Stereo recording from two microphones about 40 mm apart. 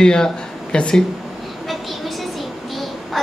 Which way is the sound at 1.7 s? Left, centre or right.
Centre.